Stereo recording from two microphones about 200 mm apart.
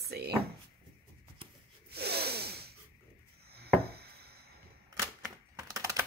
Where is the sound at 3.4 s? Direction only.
50° right (ahead or behind).